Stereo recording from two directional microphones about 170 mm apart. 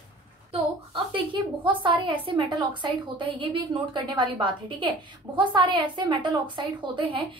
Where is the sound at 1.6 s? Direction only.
30° right (ahead or behind).